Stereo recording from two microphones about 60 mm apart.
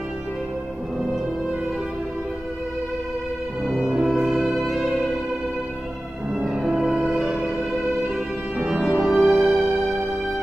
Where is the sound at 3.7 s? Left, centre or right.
Centre.